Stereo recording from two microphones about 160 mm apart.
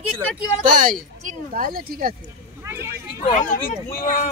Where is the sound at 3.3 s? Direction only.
55° left (ahead or behind).